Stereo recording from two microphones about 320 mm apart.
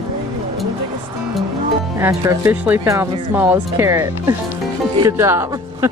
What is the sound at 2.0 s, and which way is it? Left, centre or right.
Speech, centre.